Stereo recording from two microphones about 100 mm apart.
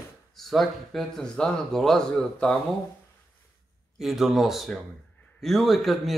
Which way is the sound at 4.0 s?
Centre (ahead or behind).